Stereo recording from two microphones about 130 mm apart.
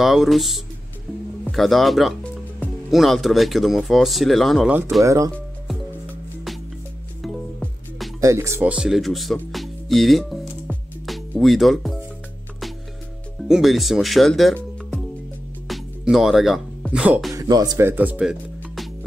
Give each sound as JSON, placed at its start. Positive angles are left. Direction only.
{"t": 0.0, "sound": "speech", "side_deg": 0}
{"t": 4.6, "sound": "speech", "side_deg": -15}
{"t": 8.2, "sound": "speech", "side_deg": -25}
{"t": 8.6, "sound": "speech", "side_deg": -5}
{"t": 13.5, "sound": "speech", "side_deg": 0}
{"t": 15.7, "sound": "music", "side_deg": -5}
{"t": 16.9, "sound": "speech", "side_deg": -5}
{"t": 17.3, "sound": "speech", "side_deg": -30}
{"t": 17.8, "sound": "speech", "side_deg": -15}